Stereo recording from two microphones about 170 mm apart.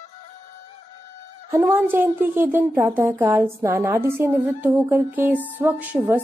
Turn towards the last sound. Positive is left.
turn(degrees=-10)  # may be behind; listen again after turning